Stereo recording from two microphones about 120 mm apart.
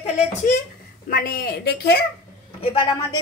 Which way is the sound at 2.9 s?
35° left (ahead or behind).